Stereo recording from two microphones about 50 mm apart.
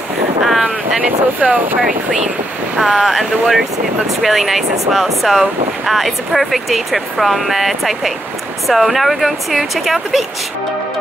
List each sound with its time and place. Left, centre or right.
0.4 s boat: centre
0.7 s speech: right
2.8 s speech: centre